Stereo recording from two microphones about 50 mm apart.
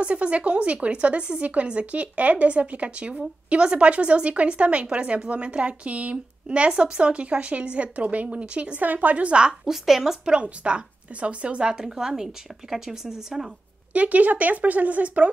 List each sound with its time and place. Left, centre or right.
0.0 s speech: right
9.5 s speech: centre
10.3 s speech: right
11.7 s speech: centre
13.9 s speech: right